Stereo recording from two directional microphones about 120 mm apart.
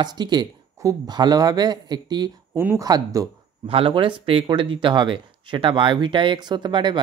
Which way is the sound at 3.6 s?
50° right (ahead or behind).